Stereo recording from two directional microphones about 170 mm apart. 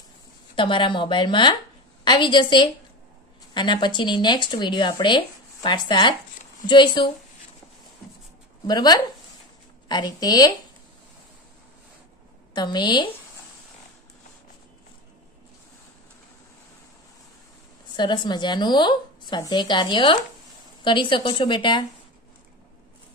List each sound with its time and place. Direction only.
0.6 s speech: 30° left (ahead or behind)
8.6 s speech: 25° left (ahead or behind)
12.5 s speech: 25° left (ahead or behind)
17.9 s speech: 25° left (ahead or behind)